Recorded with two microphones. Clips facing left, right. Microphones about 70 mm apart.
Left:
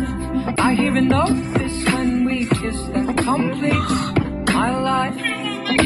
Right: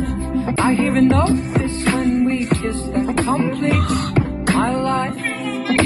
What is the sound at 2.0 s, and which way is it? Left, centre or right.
Music, centre.